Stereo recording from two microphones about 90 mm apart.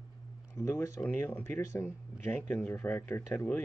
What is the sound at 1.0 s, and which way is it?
Speech, 25° left (ahead or behind).